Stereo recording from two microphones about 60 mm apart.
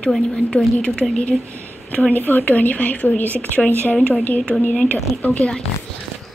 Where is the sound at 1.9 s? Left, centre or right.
Left.